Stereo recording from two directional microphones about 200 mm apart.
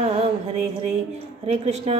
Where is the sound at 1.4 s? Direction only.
30° right (ahead or behind).